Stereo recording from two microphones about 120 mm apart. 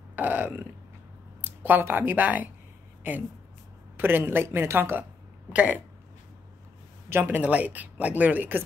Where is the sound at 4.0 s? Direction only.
20° right (ahead or behind).